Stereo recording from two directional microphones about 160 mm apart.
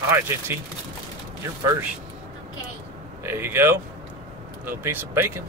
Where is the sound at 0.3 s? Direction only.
15° right (ahead or behind).